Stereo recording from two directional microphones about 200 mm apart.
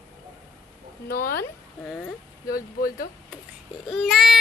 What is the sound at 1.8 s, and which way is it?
Speech, 5° left (ahead or behind).